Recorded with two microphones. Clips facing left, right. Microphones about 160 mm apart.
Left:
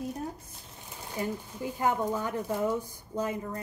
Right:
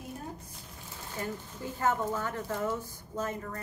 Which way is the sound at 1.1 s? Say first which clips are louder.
Left 4 dB; 15° left (ahead or behind).